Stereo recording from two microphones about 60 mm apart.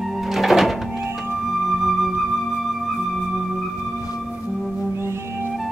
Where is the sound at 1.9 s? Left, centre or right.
Centre.